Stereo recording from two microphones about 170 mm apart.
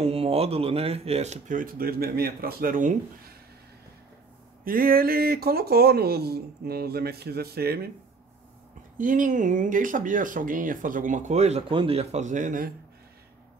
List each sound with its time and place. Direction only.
0.0 s speech: 35° right (ahead or behind)
4.6 s speech: 60° right (ahead or behind)
8.9 s speech: 50° right (ahead or behind)